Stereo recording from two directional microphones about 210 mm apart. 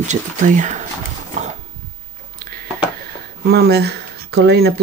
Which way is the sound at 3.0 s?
50° right (ahead or behind).